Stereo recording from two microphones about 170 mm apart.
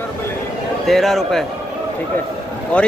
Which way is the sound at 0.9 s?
Centre (ahead or behind).